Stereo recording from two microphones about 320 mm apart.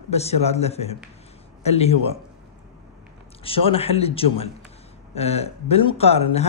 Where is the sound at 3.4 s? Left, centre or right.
Centre.